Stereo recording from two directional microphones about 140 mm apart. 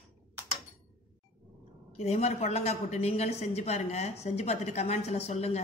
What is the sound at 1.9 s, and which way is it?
A woman's voice, 50° left (ahead or behind).